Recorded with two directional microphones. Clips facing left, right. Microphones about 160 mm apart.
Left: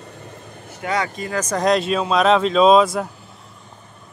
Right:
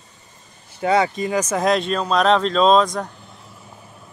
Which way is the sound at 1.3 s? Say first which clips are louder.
Left 1 dB; 5° right (ahead or behind).